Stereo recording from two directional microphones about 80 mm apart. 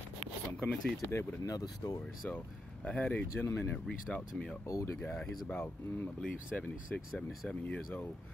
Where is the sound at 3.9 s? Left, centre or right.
Centre.